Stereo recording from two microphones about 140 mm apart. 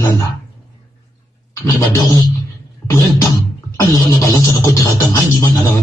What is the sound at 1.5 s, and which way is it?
Music, 20° left (ahead or behind).